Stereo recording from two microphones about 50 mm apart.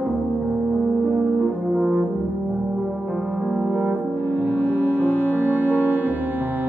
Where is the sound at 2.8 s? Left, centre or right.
Centre.